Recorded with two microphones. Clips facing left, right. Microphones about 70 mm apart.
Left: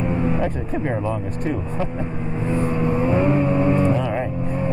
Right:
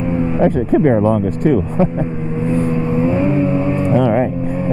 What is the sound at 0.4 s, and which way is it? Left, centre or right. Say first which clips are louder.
Speech: right 11 dB; right.